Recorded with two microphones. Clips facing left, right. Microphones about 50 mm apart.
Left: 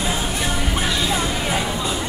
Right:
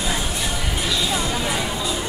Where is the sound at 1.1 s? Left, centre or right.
Centre.